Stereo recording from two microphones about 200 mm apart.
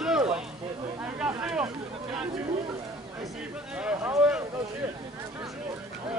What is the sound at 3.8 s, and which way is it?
Speech, 5° right (ahead or behind).